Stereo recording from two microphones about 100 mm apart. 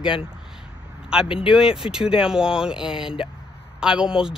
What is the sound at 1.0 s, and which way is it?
Speech, 10° right (ahead or behind).